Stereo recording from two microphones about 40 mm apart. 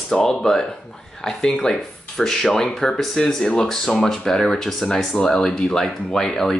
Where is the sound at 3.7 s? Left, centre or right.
Centre.